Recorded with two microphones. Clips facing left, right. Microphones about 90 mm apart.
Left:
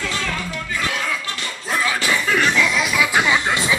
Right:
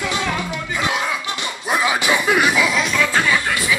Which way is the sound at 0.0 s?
20° right (ahead or behind).